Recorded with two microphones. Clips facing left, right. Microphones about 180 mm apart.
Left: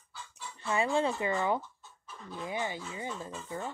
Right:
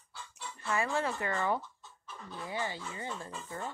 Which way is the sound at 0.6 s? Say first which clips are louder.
Left 4 dB; 20° left (ahead or behind).